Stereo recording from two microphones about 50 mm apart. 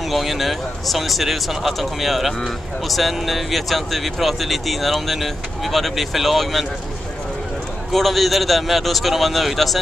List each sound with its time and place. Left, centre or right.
0.0 s speech: centre
7.9 s speech: centre